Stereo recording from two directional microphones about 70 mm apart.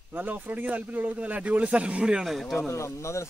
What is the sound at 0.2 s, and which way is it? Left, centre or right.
Speech, right.